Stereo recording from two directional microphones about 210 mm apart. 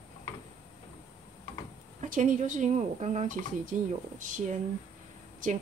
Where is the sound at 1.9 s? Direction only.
40° right (ahead or behind).